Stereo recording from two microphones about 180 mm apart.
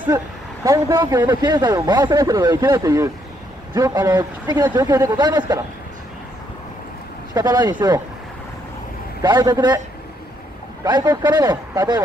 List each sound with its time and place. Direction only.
0.7 s speech: 20° right (ahead or behind)
7.3 s speech: 20° right (ahead or behind)
9.2 s speech: 25° right (ahead or behind)
10.8 s speech: 25° right (ahead or behind)